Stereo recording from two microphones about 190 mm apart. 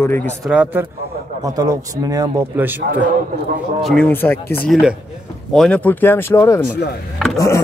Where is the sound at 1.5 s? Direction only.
20° right (ahead or behind).